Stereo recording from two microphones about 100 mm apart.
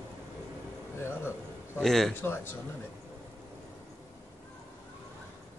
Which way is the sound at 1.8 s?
5° left (ahead or behind).